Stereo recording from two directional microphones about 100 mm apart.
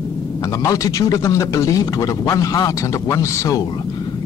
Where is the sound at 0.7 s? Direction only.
35° left (ahead or behind).